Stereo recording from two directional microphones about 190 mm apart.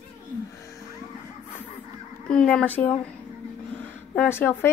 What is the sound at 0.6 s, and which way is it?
Music, 15° left (ahead or behind).